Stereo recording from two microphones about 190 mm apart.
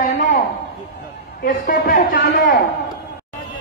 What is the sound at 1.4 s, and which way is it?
A man's voice, 45° left (ahead or behind).